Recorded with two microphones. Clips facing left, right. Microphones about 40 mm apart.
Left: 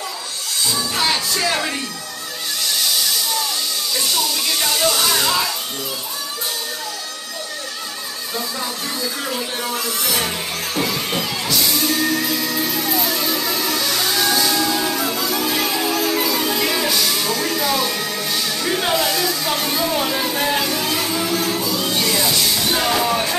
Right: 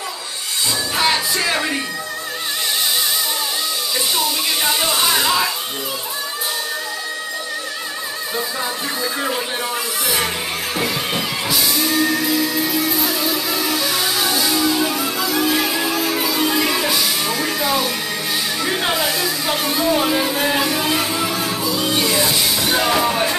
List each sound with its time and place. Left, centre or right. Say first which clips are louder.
0.9 s speech: right 3 dB; centre
4.1 s speech: right 1 dB; centre
9.0 s speech: right 4 dB; right
9.6 s music: right 1 dB; centre